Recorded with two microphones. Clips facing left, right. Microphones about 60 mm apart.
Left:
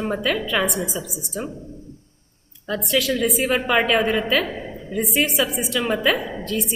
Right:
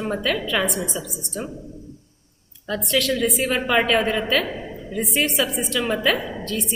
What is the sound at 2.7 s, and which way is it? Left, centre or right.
A woman's voice, centre.